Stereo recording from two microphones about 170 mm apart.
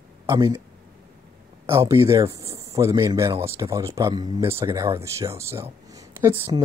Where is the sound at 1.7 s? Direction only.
15° right (ahead or behind).